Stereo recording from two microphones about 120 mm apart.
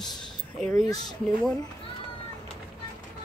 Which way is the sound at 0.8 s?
30° left (ahead or behind).